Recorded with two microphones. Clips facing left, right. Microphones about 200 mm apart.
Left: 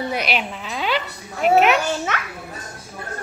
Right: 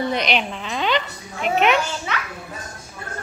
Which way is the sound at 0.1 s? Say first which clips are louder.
Right 2 dB; 5° left (ahead or behind).